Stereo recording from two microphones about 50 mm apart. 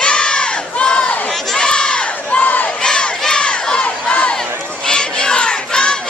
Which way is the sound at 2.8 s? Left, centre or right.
Centre.